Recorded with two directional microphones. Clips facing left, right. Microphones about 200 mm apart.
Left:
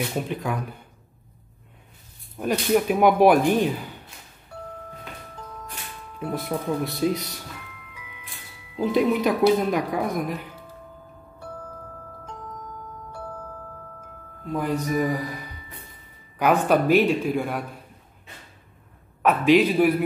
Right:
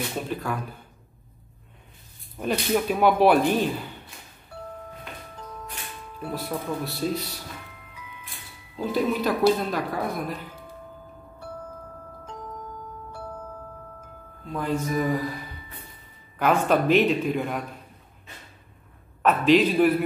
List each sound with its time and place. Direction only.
0.3 s speech: 15° left (ahead or behind)
2.3 s speech: 10° left (ahead or behind)
6.1 s speech: 20° left (ahead or behind)
8.7 s speech: 15° left (ahead or behind)
14.4 s speech: 10° left (ahead or behind)
16.3 s speech: 10° left (ahead or behind)
19.2 s speech: 10° left (ahead or behind)